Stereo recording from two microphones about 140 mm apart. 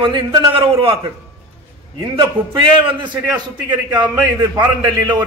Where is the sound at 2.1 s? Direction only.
35° right (ahead or behind).